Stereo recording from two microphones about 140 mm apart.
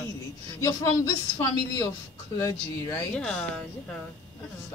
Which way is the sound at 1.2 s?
30° left (ahead or behind).